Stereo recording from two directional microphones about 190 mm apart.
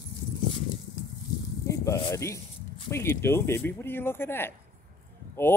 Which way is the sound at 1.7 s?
15° left (ahead or behind).